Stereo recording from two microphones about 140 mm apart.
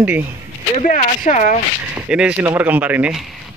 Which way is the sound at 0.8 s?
70° left (ahead or behind).